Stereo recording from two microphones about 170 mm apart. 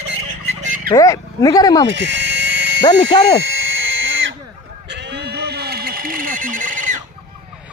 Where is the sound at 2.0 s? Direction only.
90° right.